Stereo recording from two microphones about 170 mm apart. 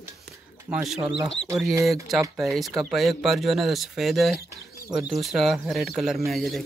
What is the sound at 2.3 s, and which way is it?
Speech, centre (ahead or behind).